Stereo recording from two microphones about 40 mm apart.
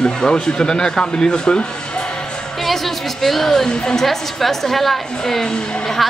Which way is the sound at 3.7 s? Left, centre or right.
Centre.